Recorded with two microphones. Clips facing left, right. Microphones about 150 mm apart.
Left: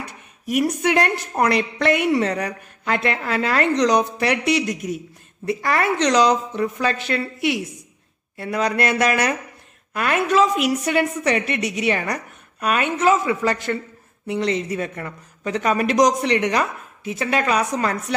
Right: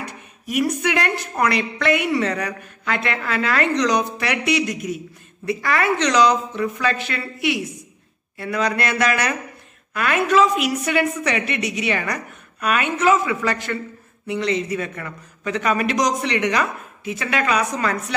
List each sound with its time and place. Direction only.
0.5 s a woman's voice: 40° left (ahead or behind)
8.4 s a woman's voice: 35° left (ahead or behind)
12.0 s a woman's voice: 30° left (ahead or behind)